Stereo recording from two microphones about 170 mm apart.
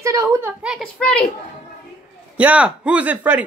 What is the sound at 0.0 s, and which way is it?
Speech, 20° right (ahead or behind).